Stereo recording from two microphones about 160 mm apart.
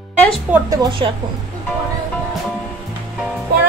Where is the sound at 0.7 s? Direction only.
25° right (ahead or behind).